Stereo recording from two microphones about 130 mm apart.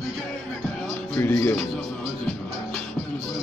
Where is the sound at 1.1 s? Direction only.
20° left (ahead or behind).